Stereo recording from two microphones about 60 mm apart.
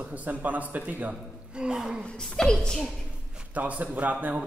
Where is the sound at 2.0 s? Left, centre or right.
Centre.